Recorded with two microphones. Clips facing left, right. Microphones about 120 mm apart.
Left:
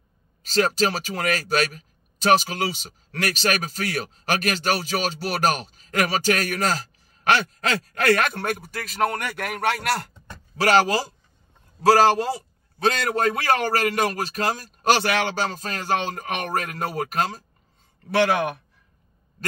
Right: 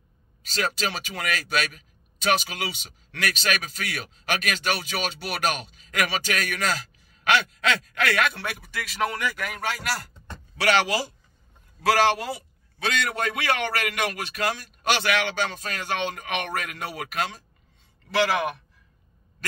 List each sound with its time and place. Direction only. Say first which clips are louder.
0.4 s speech: left 7 dB; 40° left (ahead or behind)
10.6 s a man's voice: left 4 dB; 40° left (ahead or behind)